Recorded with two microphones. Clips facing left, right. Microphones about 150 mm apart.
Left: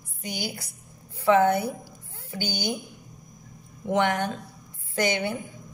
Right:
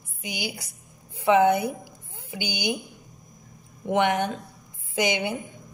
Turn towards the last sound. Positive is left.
turn(degrees=-15)  # may be behind; listen again after turning